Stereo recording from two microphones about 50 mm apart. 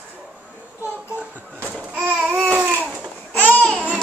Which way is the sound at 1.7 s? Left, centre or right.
Right.